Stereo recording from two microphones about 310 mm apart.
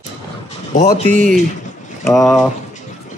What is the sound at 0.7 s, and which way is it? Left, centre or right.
Speech, left.